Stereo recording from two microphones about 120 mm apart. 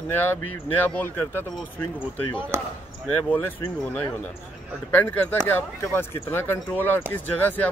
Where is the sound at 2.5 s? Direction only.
20° right (ahead or behind).